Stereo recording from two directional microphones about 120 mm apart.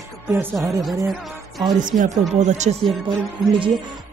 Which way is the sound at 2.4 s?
75° right (ahead or behind).